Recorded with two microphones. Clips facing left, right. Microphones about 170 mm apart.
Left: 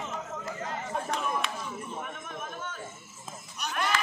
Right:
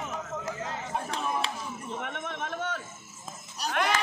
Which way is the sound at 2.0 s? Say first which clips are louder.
Right 4 dB; 75° right (ahead or behind).